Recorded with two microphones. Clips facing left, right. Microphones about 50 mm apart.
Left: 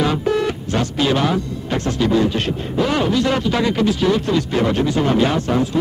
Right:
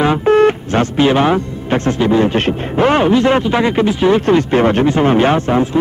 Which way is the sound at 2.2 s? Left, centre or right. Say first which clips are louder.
Right 5 dB; right.